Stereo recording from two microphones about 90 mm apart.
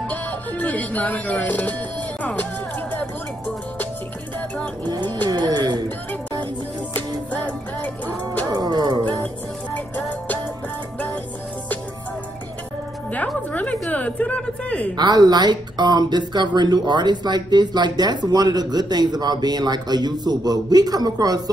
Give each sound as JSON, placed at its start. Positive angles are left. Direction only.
{"t": 0.1, "sound": "speech", "side_deg": 15}
{"t": 5.3, "sound": "music", "side_deg": -50}
{"t": 6.9, "sound": "music", "side_deg": 15}
{"t": 8.5, "sound": "music", "side_deg": -50}
{"t": 9.0, "sound": "a woman's voice", "side_deg": 15}
{"t": 9.9, "sound": "music", "side_deg": 20}
{"t": 13.1, "sound": "a woman's voice", "side_deg": 15}
{"t": 15.0, "sound": "speech", "side_deg": -50}